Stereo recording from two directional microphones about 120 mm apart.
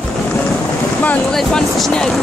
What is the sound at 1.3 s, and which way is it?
Speech, 5° left (ahead or behind).